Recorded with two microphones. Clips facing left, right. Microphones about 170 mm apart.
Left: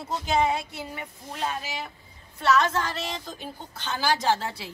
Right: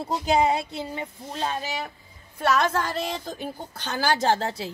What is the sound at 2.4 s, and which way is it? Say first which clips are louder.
A woman's voice: even; 55° right (ahead or behind).